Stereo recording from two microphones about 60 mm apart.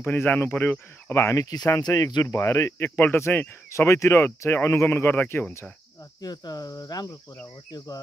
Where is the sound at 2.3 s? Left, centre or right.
Left.